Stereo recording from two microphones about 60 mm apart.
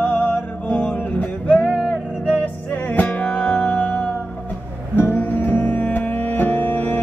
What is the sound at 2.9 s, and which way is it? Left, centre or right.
Music, left.